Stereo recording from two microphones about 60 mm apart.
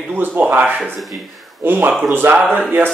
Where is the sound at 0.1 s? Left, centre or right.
Right.